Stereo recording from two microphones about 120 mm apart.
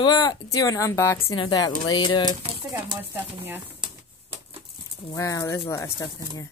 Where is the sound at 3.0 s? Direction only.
15° right (ahead or behind).